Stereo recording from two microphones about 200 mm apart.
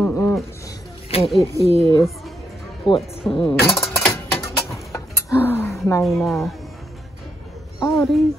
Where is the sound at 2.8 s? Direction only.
25° left (ahead or behind).